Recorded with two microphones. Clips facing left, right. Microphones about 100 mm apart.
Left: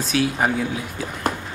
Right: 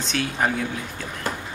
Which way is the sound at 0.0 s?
5° left (ahead or behind).